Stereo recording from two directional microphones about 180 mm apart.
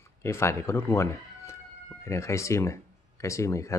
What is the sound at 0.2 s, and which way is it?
Speech, 15° left (ahead or behind).